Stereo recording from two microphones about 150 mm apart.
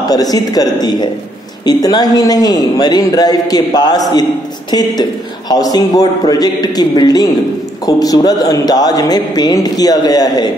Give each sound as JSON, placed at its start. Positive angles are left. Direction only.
{"t": 0.1, "sound": "a man's voice", "side_deg": 25}